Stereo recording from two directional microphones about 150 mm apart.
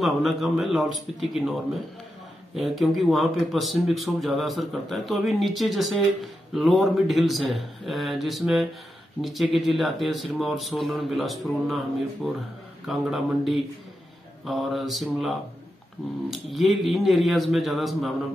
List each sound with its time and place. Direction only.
0.0 s speech: centre (ahead or behind)
2.5 s speech: centre (ahead or behind)